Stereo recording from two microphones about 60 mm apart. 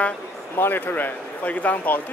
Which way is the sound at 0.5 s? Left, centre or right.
Left.